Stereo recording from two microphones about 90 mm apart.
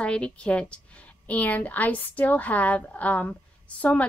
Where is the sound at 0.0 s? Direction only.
10° left (ahead or behind).